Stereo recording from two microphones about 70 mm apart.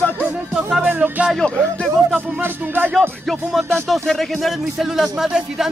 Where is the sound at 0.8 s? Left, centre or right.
Right.